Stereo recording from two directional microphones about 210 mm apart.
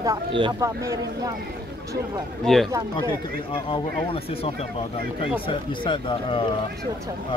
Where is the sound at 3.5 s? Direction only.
25° left (ahead or behind).